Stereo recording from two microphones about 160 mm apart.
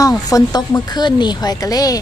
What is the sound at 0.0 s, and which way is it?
Speech, 20° left (ahead or behind).